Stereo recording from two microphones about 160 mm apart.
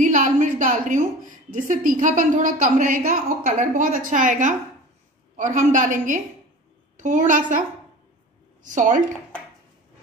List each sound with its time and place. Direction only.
0.0 s a woman's voice: 55° right (ahead or behind)
8.6 s a woman's voice: 55° right (ahead or behind)